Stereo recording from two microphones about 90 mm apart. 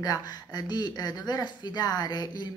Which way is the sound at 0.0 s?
45° left (ahead or behind).